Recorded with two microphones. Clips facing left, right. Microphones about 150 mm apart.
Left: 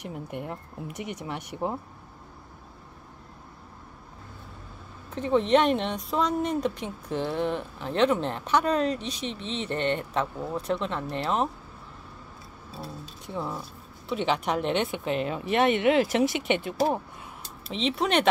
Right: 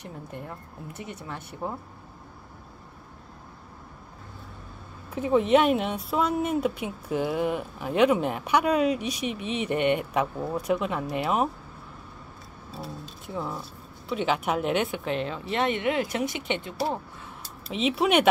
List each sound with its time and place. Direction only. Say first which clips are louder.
0.0 s speech: left 3 dB; 15° left (ahead or behind)
5.1 s speech: right 1 dB; 5° right (ahead or behind)
12.7 s speech: right 1 dB; centre (ahead or behind); by 16.7 s 20° left (ahead or behind)
17.6 s speech: right 3 dB; 5° right (ahead or behind)